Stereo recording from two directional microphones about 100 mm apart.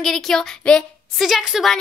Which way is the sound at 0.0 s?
5° left (ahead or behind).